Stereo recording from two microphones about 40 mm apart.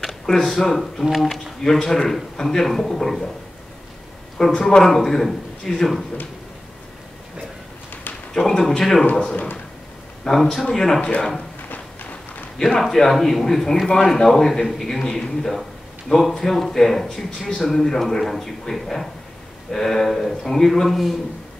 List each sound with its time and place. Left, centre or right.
0.0 s speech: centre
1.6 s a man's voice: centre
4.6 s a man's voice: centre
8.4 s a man's voice: centre
9.1 s speech: left
10.2 s a man's voice: centre
11.7 s a sound: left
12.5 s a man's voice: centre